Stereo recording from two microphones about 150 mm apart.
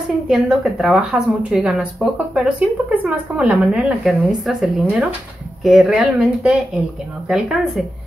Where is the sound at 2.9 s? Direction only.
10° right (ahead or behind).